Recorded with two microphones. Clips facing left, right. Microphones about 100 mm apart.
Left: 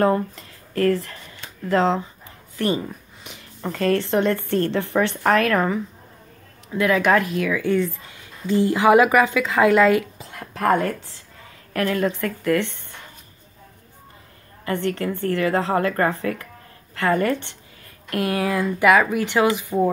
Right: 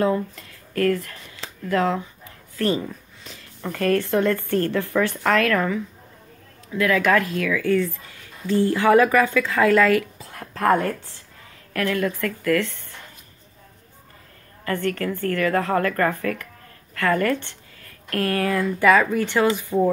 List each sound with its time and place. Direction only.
0.4 s a sound: 30° left (ahead or behind)
1.7 s a woman's voice: 30° left (ahead or behind)
2.5 s a sound: 15° left (ahead or behind)
3.6 s a woman's voice: 25° left (ahead or behind)
6.7 s a woman's voice: 25° left (ahead or behind)
11.7 s a woman's voice: 25° left (ahead or behind)
14.6 s a woman's voice: 20° left (ahead or behind)